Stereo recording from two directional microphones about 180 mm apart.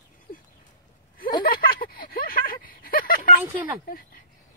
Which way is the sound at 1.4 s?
55° left (ahead or behind).